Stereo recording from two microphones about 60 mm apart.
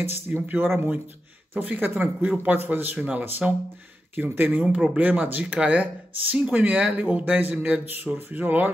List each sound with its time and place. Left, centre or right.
0.0 s speech: right
4.6 s speech: centre
4.9 s speech: right